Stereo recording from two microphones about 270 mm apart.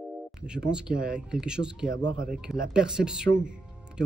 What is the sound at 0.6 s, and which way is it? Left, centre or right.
Speech, centre.